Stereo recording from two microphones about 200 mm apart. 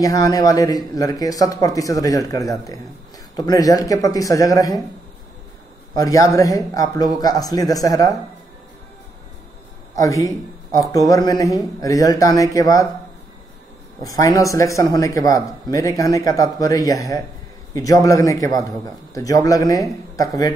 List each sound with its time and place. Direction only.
0.0 s speech: 15° left (ahead or behind)
5.9 s speech: 15° left (ahead or behind)
9.9 s a man's voice: 15° left (ahead or behind)
14.0 s speech: 15° left (ahead or behind)